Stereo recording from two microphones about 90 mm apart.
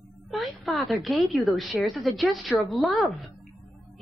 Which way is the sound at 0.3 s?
Centre (ahead or behind).